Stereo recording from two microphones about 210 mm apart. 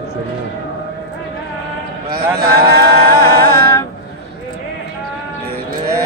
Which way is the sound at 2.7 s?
50° right (ahead or behind).